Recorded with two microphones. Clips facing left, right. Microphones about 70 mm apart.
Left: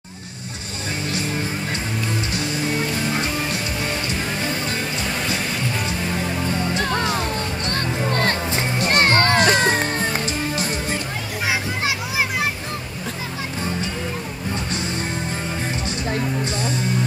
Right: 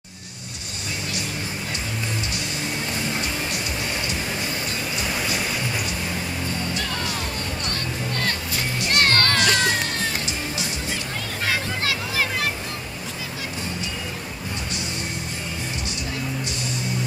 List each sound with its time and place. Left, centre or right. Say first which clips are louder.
6.8 s music: left 6 dB; left
9.0 s music: left 3 dB; centre
9.4 s music: left 4 dB; left
11.4 s children playing: left 2 dB; centre